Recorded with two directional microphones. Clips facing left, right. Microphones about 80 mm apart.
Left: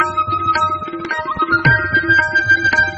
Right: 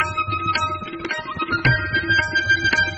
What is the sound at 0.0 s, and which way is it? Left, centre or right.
Tabla, left.